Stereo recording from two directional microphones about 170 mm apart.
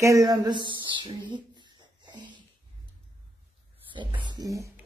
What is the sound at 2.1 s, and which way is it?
Wheeze, 25° right (ahead or behind).